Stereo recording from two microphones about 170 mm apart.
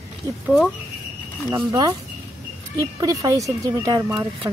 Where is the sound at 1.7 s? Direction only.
20° right (ahead or behind).